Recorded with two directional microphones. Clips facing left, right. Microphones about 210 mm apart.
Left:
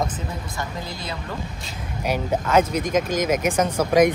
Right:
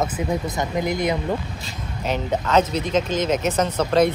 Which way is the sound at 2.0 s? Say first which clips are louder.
Even; 10° left (ahead or behind).